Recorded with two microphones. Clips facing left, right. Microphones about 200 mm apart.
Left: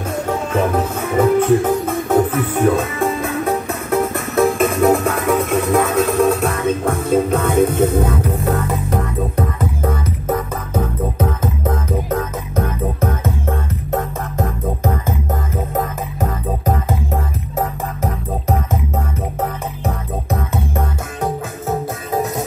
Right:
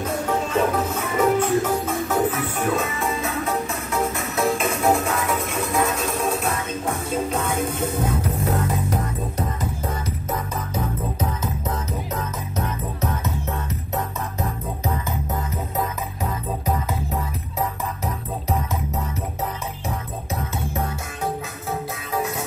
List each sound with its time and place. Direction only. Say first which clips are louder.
1.1 s music: left 6 dB; 55° left (ahead or behind)
9.8 s music: left 7 dB; 55° left (ahead or behind)